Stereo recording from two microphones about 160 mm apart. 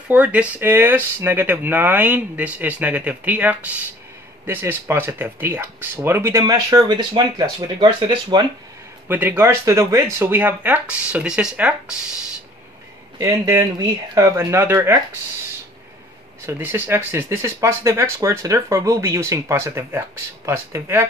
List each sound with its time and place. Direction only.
0.1 s speech: 10° right (ahead or behind); by 8.5 s 30° right (ahead or behind)
9.0 s speech: 10° right (ahead or behind)
13.2 s speech: 20° right (ahead or behind)
16.4 s speech: 10° right (ahead or behind)